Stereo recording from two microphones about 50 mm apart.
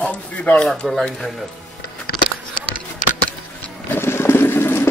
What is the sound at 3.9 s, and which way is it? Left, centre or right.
Boat, left.